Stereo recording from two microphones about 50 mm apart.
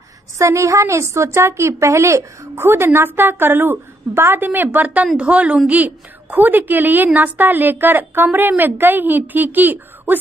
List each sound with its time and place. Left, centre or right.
0.4 s a woman's voice: right